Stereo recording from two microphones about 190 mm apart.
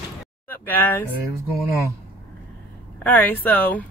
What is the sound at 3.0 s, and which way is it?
Speech, 10° left (ahead or behind).